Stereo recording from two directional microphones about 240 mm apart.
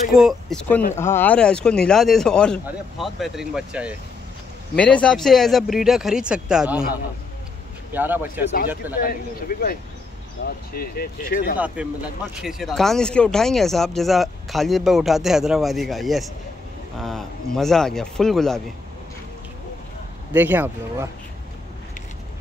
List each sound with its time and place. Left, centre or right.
0.1 s speech: centre
7.9 s speech: centre
8.9 s speech: left
11.5 s speech: centre
20.3 s speech: centre